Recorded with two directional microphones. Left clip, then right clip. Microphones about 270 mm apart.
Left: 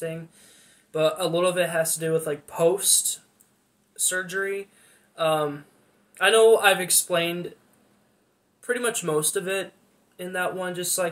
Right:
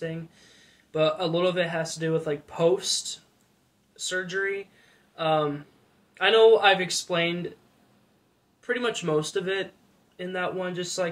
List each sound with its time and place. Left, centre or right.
0.9 s speech: centre
8.6 s speech: centre